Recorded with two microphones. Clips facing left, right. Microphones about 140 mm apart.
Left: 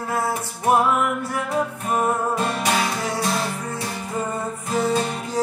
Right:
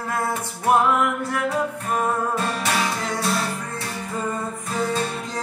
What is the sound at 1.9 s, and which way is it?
Music, 15° left (ahead or behind).